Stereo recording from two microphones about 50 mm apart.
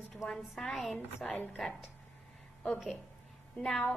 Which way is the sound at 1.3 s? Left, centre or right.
Left.